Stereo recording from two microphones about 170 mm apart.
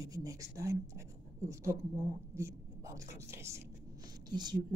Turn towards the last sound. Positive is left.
turn(degrees=-25)  # may be behind; listen again after turning